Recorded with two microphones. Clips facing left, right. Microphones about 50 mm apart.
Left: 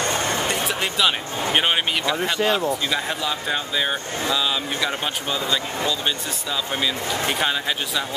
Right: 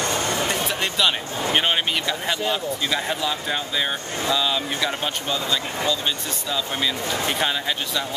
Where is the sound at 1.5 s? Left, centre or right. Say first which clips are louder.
Left 1 dB; centre.